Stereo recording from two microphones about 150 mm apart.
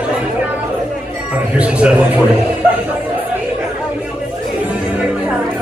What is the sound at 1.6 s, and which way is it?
Speech, 10° right (ahead or behind).